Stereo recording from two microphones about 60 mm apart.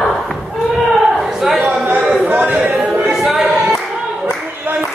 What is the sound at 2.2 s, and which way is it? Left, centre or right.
Chatter, right.